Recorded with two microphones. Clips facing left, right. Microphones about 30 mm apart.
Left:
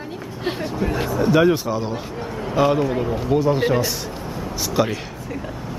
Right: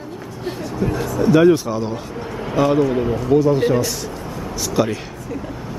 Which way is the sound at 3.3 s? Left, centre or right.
Centre.